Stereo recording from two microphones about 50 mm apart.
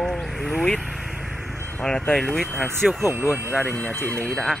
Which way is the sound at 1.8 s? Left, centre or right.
Centre.